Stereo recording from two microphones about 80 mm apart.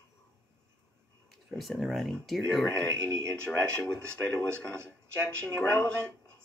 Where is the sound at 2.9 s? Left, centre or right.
Right.